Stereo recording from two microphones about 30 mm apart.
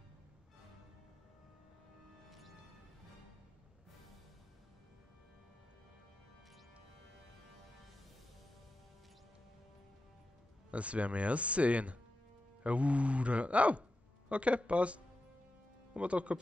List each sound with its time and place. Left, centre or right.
10.7 s speech: right